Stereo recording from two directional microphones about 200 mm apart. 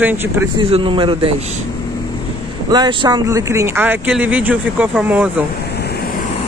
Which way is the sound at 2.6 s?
20° right (ahead or behind).